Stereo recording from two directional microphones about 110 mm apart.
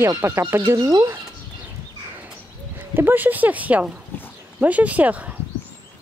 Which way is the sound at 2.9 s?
20° right (ahead or behind).